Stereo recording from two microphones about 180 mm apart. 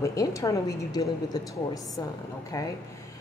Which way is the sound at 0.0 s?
20° left (ahead or behind).